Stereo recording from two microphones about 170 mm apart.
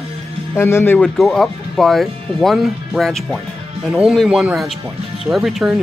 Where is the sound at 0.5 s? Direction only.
15° left (ahead or behind).